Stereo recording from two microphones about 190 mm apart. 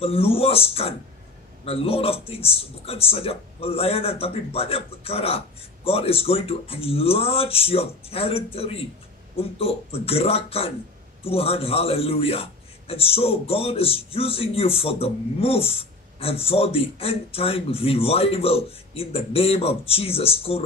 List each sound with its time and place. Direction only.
0.0 s a man's voice: 30° left (ahead or behind)